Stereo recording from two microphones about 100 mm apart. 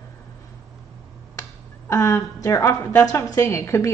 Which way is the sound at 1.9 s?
35° left (ahead or behind).